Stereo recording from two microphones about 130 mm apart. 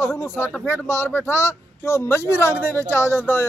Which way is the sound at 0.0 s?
20° left (ahead or behind).